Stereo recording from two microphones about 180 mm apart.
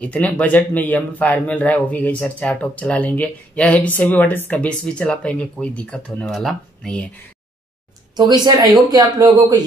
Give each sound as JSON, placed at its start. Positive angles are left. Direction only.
{"t": 0.0, "sound": "speech", "side_deg": 10}
{"t": 8.2, "sound": "speech", "side_deg": -20}